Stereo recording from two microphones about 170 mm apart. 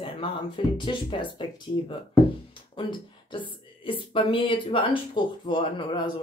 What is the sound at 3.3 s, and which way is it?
Speech, 30° left (ahead or behind).